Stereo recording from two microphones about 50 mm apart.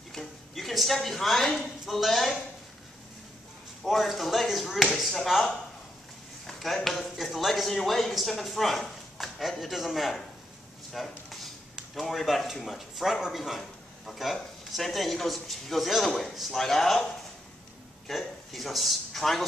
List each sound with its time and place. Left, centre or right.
0.1 s speech: centre
3.8 s speech: centre
10.9 s a sound: centre
11.9 s speech: centre
18.0 s speech: centre